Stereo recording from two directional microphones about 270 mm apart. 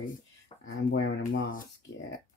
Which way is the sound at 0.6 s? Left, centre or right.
Left.